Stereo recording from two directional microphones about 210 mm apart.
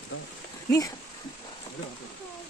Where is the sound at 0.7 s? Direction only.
15° left (ahead or behind).